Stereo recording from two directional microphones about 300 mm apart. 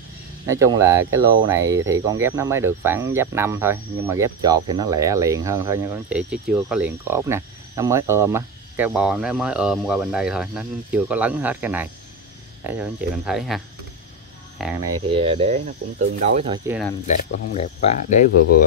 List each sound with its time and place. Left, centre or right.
0.5 s speech: centre
14.6 s speech: centre
17.0 s speech: left